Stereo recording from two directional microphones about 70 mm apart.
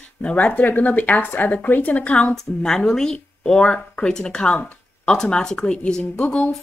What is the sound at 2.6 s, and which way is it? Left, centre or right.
Speech, centre.